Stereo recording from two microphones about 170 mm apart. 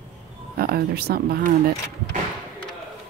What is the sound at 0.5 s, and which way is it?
Speech, 65° right (ahead or behind).